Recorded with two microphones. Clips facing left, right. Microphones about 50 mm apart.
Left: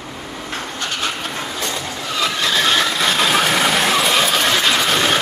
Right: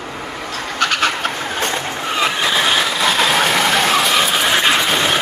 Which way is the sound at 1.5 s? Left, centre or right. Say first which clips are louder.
Right 4 dB; right.